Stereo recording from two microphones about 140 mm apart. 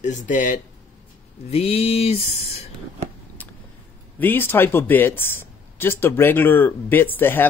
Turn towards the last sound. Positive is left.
turn(degrees=15)  # may be behind; listen again after turning